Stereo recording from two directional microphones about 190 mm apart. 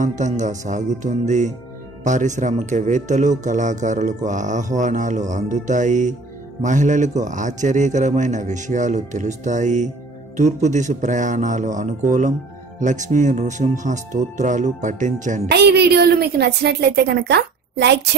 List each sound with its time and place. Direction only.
0.0 s a man's voice: 40° right (ahead or behind)
15.5 s a woman's voice: 60° right (ahead or behind)